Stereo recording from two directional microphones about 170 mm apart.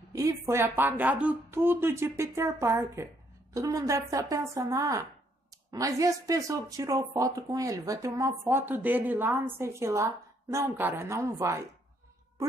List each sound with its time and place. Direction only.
0.1 s speech: 20° right (ahead or behind)